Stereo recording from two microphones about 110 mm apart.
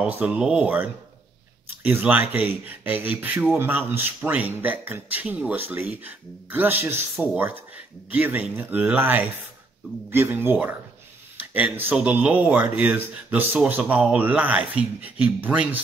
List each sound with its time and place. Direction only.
0.0 s speech: 10° right (ahead or behind)
11.3 s a sound: 15° right (ahead or behind)
11.9 s speech: 15° right (ahead or behind)